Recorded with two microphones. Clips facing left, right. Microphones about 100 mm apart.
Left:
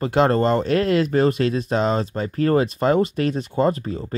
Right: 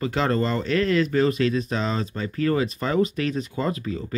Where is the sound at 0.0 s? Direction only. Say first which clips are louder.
Left 5 dB; 50° left (ahead or behind).